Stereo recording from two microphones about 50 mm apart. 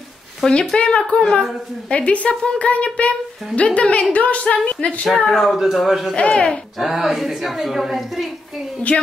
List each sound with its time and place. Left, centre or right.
0.4 s speech: centre
0.7 s a woman's voice: left
5.0 s speech: centre
6.1 s a woman's voice: left
6.8 s speech: centre
8.9 s speech: centre